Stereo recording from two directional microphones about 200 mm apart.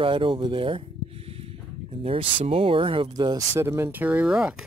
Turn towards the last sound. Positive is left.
turn(degrees=-5)  # may be behind; listen again after turning